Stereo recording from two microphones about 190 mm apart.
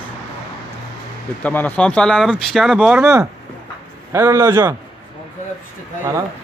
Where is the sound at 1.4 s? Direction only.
10° left (ahead or behind); by 4.7 s 15° right (ahead or behind).